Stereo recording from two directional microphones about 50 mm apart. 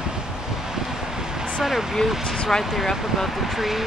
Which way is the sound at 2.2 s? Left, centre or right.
Centre.